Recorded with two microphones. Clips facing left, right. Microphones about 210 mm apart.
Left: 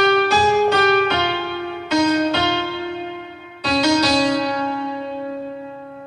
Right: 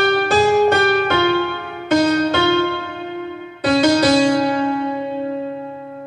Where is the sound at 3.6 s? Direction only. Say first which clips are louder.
Right 4 dB; 50° right (ahead or behind).